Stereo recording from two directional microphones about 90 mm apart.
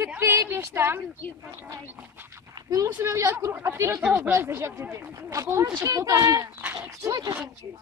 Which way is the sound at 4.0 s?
15° right (ahead or behind).